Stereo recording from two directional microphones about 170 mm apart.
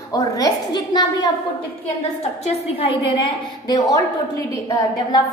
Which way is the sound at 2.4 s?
35° left (ahead or behind).